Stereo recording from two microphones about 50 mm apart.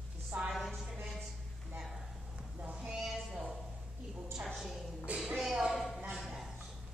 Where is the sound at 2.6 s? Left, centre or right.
Centre.